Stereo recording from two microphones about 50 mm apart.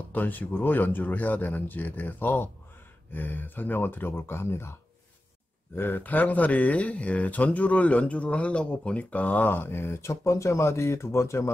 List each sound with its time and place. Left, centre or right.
0.1 s speech: left
5.8 s speech: left
9.5 s speech: left